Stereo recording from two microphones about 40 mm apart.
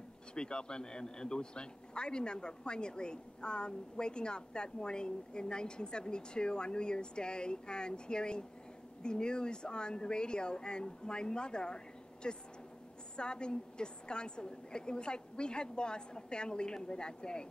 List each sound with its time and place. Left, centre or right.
0.3 s speech: left